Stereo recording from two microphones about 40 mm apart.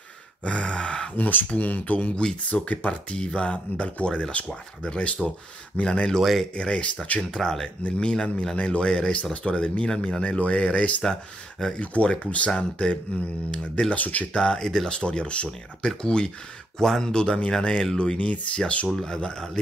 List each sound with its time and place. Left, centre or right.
0.5 s a sound: left
1.1 s speech: left
6.5 s speech: left
13.9 s speech: left
14.3 s speech: centre; by 18.6 s left
18.9 s speech: centre